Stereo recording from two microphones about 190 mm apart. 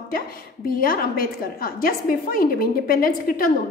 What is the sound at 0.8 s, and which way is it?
A woman's voice, 50° left (ahead or behind).